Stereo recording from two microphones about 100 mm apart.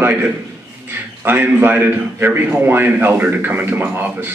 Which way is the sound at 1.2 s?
20° right (ahead or behind).